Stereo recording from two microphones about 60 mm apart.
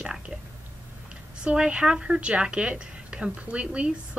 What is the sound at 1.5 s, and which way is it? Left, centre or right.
A woman's voice, centre.